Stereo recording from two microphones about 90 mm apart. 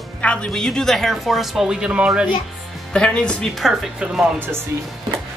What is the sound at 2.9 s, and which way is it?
Speech, 10° left (ahead or behind).